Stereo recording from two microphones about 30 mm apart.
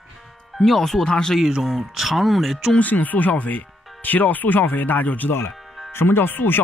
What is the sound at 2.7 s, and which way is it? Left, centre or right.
Speech, left.